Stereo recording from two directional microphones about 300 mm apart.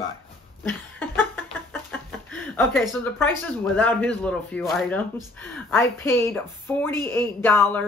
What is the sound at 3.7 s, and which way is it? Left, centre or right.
A man's voice, centre.